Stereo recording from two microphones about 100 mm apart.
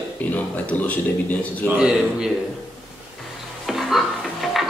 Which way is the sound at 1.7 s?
5° right (ahead or behind).